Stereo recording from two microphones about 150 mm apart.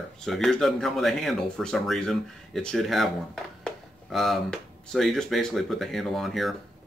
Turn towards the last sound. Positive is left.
turn(degrees=0)  # may be behind; listen again after turning